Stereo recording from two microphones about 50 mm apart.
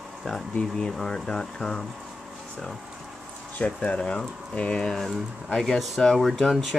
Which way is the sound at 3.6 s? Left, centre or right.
Left.